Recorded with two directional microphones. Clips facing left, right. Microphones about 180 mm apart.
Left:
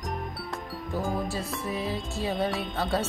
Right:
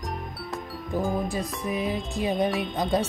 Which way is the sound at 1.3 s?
15° right (ahead or behind).